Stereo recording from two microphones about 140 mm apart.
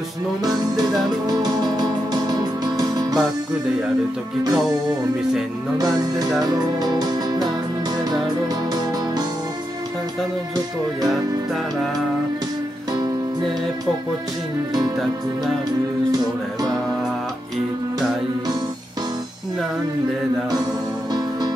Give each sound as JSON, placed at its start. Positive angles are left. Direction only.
{"t": 0.4, "sound": "music", "side_deg": -30}
{"t": 4.5, "sound": "music", "side_deg": -30}